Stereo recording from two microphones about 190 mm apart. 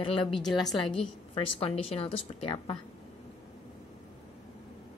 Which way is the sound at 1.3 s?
30° left (ahead or behind).